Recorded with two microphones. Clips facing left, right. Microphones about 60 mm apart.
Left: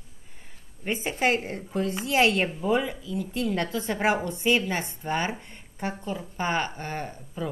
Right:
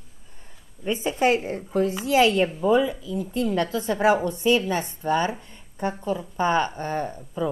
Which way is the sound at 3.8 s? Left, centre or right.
Left.